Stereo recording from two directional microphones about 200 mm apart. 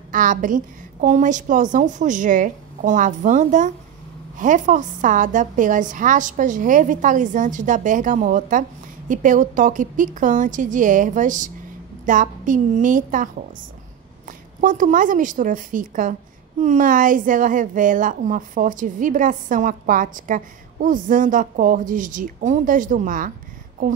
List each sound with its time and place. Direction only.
0.1 s a woman's voice: 40° right (ahead or behind)